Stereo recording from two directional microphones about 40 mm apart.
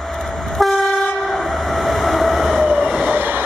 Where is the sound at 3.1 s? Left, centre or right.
Right.